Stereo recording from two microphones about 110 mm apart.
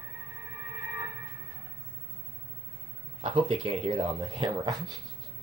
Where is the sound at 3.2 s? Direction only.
60° right (ahead or behind); by 4.9 s 40° right (ahead or behind).